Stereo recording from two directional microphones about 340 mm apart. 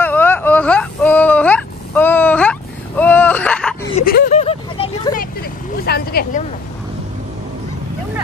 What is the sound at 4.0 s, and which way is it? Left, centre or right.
Vehicle, left.